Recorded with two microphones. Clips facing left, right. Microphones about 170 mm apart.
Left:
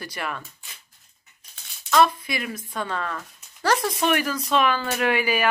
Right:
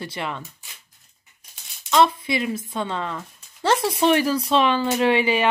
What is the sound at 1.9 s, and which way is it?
Speech, 25° right (ahead or behind).